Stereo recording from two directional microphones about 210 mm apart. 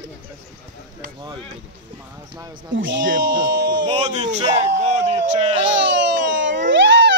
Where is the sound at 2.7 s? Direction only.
60° right (ahead or behind).